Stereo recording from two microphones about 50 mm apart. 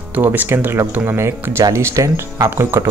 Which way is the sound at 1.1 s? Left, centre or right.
Right.